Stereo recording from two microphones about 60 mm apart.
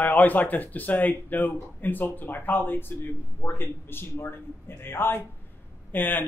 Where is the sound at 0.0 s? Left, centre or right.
Left.